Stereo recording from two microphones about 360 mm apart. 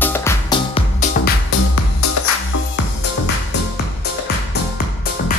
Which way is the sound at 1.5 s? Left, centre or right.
Left.